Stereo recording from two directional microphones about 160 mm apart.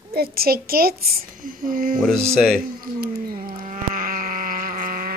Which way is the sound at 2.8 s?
65° right (ahead or behind).